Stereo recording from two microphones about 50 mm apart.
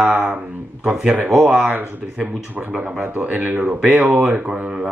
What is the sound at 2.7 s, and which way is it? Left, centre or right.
Speech, right.